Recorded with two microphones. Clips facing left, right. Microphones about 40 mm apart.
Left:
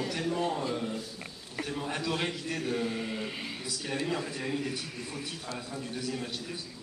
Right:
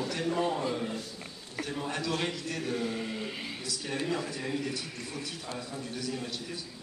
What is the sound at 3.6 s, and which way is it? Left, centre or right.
A man's voice, centre.